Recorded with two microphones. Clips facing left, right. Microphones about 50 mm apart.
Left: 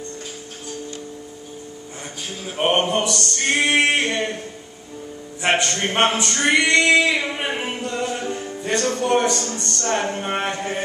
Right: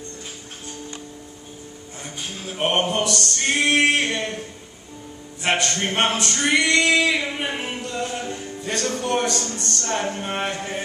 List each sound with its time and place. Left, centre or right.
2.4 s speech: centre
3.4 s male singing: centre
5.4 s male singing: centre
9.8 s speech: centre